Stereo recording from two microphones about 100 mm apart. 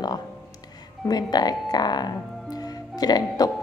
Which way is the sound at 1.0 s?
40° left (ahead or behind).